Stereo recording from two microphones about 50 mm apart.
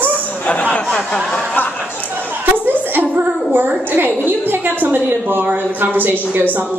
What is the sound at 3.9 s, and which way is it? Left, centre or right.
A woman's voice, right.